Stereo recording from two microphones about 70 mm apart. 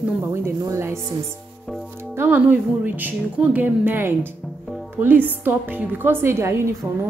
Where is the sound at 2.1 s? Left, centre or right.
Right.